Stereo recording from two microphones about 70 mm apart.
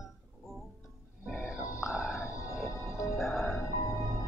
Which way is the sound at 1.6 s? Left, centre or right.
Left.